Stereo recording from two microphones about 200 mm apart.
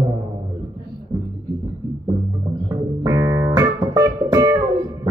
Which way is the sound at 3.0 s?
20° right (ahead or behind).